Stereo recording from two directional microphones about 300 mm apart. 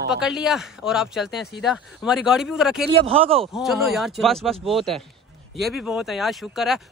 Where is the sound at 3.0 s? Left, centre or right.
Centre.